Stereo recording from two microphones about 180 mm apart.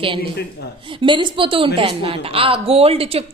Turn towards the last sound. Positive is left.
turn(degrees=-35)  # may be behind; listen again after turning